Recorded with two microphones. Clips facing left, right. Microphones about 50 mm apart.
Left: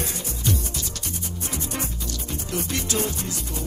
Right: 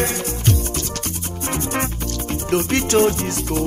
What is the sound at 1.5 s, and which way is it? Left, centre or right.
Music, right.